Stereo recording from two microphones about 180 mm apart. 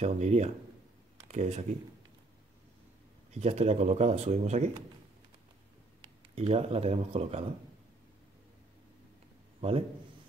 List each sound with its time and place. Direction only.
0.0 s speech: 40° right (ahead or behind)
3.3 s speech: 40° right (ahead or behind)
6.3 s speech: 35° right (ahead or behind)
9.6 s a man's voice: 30° right (ahead or behind)